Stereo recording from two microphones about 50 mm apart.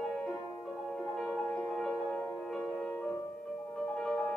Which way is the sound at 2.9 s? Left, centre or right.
Left.